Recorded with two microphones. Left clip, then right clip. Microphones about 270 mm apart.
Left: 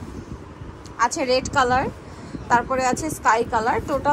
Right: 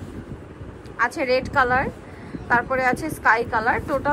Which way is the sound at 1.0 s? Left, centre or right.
Centre.